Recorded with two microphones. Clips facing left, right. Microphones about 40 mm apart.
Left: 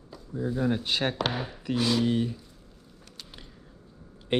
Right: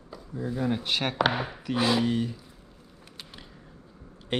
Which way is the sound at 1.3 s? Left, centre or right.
Right.